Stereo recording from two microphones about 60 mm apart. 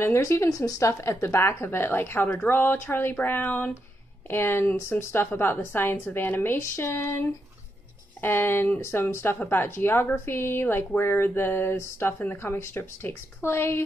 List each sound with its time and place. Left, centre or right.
0.0 s speech: left
0.5 s speech: left
1.2 s speech: left
6.6 s speech: left